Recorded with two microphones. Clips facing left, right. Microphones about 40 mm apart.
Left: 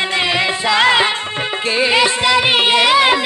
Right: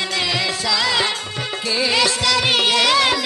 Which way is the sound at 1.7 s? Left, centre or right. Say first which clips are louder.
Left 4 dB; left.